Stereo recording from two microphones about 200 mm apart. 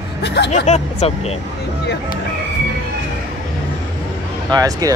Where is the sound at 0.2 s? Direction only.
60° left (ahead or behind).